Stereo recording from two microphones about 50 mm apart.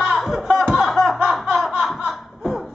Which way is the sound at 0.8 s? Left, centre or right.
Centre.